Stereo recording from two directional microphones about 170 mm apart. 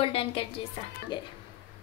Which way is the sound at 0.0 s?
35° left (ahead or behind).